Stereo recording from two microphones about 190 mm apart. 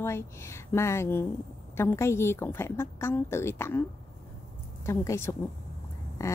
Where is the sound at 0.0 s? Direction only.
15° left (ahead or behind).